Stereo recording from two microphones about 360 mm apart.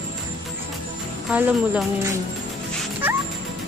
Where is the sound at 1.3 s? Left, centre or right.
Centre.